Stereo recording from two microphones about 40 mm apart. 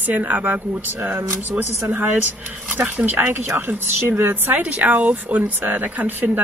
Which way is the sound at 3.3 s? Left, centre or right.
Right.